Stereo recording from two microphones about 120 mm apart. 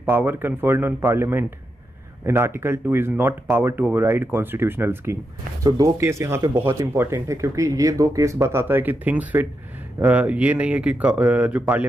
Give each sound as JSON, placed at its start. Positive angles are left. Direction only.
{"t": 0.1, "sound": "speech", "side_deg": -15}